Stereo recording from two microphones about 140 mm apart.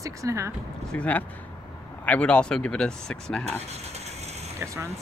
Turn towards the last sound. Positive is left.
turn(degrees=-20)  # may be behind; listen again after turning